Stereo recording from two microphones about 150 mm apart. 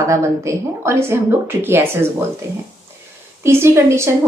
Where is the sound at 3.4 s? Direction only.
15° right (ahead or behind).